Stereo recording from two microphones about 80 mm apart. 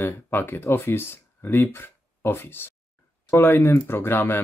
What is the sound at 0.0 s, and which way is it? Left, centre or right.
Speech, left.